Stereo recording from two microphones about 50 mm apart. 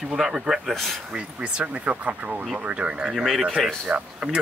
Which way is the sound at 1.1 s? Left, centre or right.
Right.